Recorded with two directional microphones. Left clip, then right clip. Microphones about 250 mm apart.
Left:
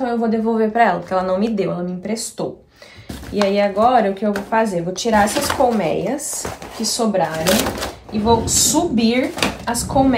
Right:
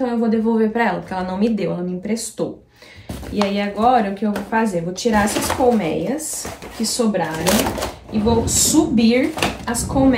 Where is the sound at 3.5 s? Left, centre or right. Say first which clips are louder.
Left 2 dB; centre.